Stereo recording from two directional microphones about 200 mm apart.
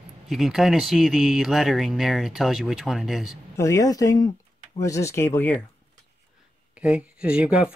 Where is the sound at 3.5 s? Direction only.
15° left (ahead or behind).